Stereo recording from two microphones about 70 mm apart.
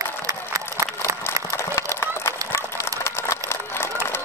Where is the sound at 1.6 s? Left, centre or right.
Left.